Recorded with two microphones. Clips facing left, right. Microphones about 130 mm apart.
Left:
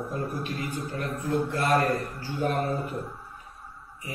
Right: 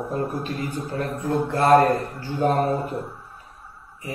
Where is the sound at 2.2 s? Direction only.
35° right (ahead or behind).